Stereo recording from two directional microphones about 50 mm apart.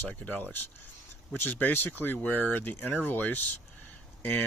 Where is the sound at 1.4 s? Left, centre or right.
Left.